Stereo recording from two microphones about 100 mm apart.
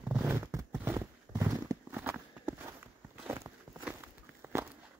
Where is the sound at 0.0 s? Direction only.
20° right (ahead or behind); by 1.8 s 35° right (ahead or behind).